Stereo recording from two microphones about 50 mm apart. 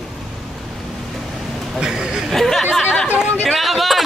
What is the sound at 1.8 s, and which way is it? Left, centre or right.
Speech, centre.